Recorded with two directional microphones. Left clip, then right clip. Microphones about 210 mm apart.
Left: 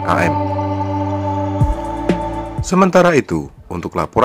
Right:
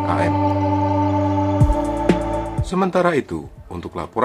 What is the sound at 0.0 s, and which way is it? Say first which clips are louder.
Speech: left 4 dB; 30° left (ahead or behind).